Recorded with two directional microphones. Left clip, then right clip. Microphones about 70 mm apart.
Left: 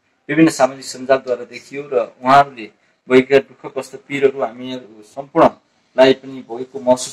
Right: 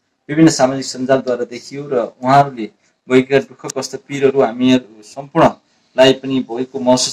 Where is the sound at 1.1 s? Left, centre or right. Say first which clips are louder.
Right 1 dB; right.